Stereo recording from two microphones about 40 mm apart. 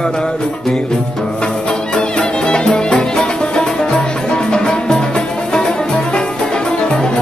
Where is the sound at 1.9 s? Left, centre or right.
Left.